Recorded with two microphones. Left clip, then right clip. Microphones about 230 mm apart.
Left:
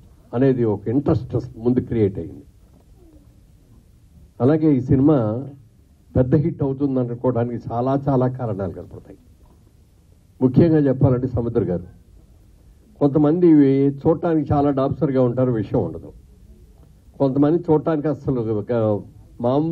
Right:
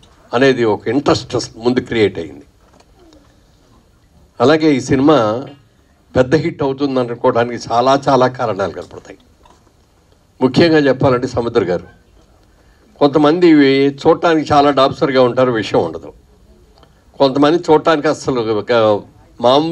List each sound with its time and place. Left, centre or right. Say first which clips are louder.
0.3 s speech: right 7 dB; centre
4.4 s speech: right 7 dB; centre
10.4 s speech: right 6 dB; centre
13.0 s speech: right 6 dB; centre